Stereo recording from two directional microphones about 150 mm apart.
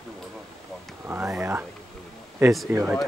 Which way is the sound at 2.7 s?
15° right (ahead or behind).